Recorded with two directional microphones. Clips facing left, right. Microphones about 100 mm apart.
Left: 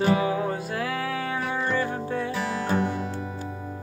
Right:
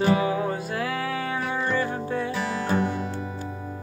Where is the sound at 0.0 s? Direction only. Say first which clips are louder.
Right 1 dB; 5° right (ahead or behind).